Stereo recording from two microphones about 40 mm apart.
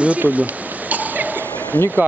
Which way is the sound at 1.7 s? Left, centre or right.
Left.